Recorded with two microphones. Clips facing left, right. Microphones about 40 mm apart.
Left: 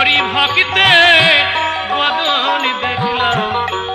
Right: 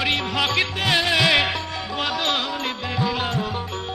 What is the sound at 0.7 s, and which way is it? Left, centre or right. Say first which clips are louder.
Music: left 12 dB; left.